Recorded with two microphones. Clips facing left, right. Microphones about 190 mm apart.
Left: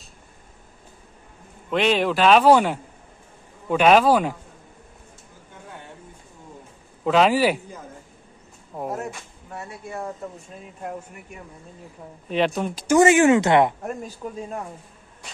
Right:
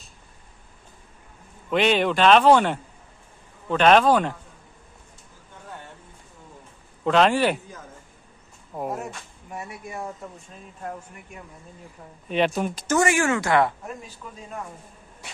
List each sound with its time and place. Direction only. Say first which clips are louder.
1.7 s speech: even; centre (ahead or behind)
7.1 s speech: left 1 dB; 5° left (ahead or behind)
8.7 s speech: left 1 dB; centre (ahead or behind)
9.5 s speech: left 1 dB; 15° right (ahead or behind)
12.3 s speech: even; centre (ahead or behind)
12.8 s speech: left 7 dB; 20° left (ahead or behind)
13.8 s speech: left 7 dB; 40° left (ahead or behind)